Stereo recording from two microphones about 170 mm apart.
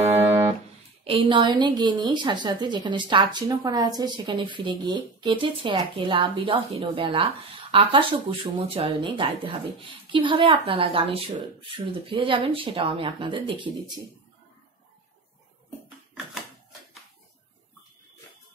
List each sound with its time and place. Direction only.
0.3 s music: 30° right (ahead or behind)
1.0 s a woman's voice: 30° right (ahead or behind)